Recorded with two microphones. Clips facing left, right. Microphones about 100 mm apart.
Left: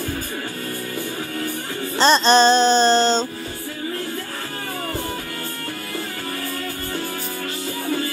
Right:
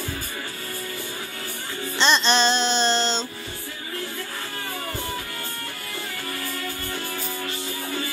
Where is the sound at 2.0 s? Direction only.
40° left (ahead or behind).